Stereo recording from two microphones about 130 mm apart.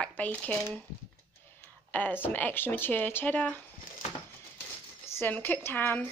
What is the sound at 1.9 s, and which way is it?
Speech, 10° left (ahead or behind).